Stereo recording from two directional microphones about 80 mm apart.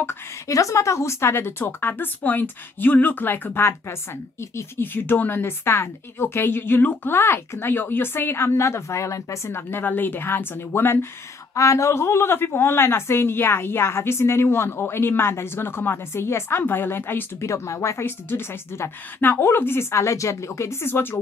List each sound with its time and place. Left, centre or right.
0.5 s a woman's voice: left
11.5 s a woman's voice: left